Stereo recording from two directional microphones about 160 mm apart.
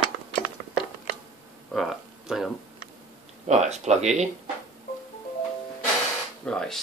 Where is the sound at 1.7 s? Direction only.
Centre (ahead or behind).